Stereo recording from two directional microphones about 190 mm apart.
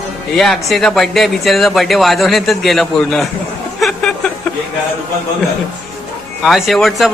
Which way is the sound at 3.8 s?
Centre (ahead or behind).